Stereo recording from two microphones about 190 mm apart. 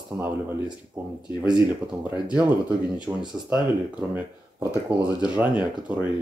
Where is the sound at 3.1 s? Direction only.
10° right (ahead or behind).